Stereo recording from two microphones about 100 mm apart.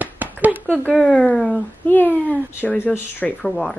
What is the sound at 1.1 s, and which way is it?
A woman's voice, 10° left (ahead or behind).